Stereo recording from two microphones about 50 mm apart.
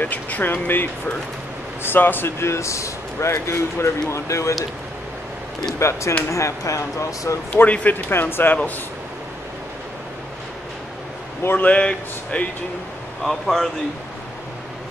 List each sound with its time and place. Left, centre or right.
0.0 s speech: left
4.1 s speech: left
5.8 s speech: left
6.3 s speech: left
7.5 s speech: left
7.9 s speech: left
11.5 s speech: left
13.2 s speech: centre